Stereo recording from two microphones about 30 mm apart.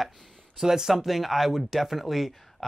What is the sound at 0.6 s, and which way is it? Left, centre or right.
Speech, centre.